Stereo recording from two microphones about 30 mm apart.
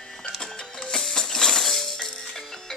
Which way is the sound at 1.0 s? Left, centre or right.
Centre.